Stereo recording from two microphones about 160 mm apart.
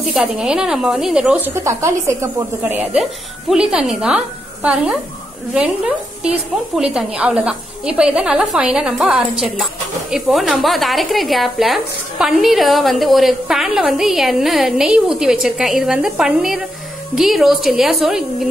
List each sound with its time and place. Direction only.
0.1 s speech: 5° right (ahead or behind)
1.5 s speech: 20° right (ahead or behind)
5.5 s speech: 5° right (ahead or behind)